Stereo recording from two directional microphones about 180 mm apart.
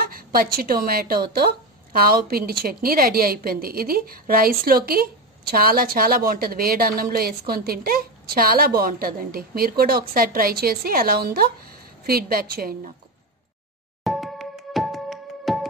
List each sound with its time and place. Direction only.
0.0 s a woman's voice: 55° right (ahead or behind)
14.0 s music: centre (ahead or behind)